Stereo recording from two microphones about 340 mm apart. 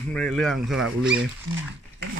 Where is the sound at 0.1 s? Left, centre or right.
Centre.